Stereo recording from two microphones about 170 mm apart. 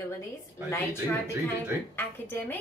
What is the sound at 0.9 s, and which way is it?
Speech, 15° right (ahead or behind).